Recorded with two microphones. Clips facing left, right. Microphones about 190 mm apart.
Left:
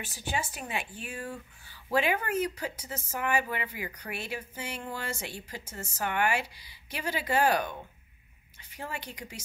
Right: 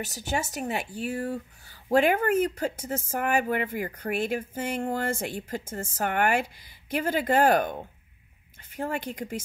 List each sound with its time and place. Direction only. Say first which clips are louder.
0.0 s speech: right 4 dB; 40° right (ahead or behind)